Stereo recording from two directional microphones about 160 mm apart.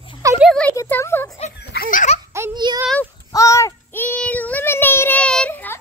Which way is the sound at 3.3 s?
20° left (ahead or behind).